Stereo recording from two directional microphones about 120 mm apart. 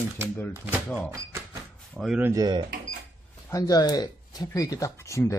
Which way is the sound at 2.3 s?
35° right (ahead or behind).